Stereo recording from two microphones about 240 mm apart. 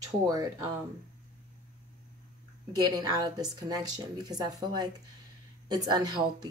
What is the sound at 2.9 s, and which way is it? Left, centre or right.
Speech, centre.